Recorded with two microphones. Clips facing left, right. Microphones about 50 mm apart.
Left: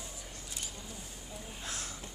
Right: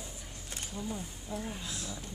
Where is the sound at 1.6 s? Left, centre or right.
Left.